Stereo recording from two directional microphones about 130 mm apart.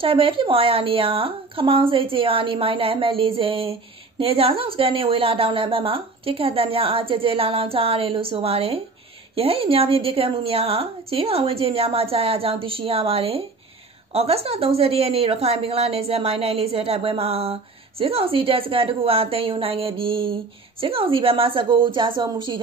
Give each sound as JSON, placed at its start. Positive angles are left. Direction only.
{"t": 0.0, "sound": "a woman's voice", "side_deg": -45}